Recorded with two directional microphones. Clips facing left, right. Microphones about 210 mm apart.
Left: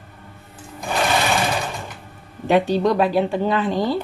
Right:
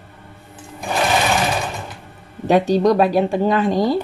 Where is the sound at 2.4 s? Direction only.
40° right (ahead or behind).